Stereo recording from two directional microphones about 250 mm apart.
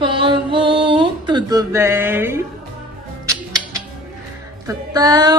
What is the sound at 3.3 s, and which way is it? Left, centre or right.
Music, centre.